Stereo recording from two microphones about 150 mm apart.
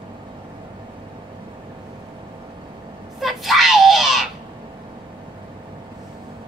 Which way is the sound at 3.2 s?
Centre (ahead or behind).